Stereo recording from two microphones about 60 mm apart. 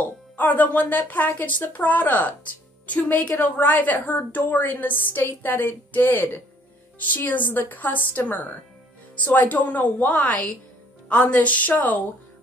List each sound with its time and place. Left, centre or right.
0.0 s a woman's voice: left